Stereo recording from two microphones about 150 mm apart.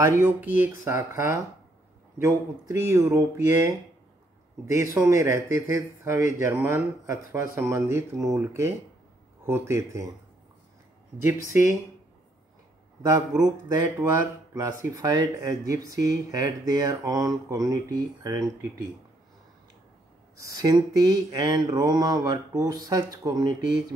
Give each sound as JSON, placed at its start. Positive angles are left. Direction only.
{"t": 0.0, "sound": "speech", "side_deg": -15}
{"t": 4.9, "sound": "speech", "side_deg": -20}
{"t": 11.2, "sound": "speech", "side_deg": -20}
{"t": 13.7, "sound": "speech", "side_deg": -20}
{"t": 20.5, "sound": "speech", "side_deg": -25}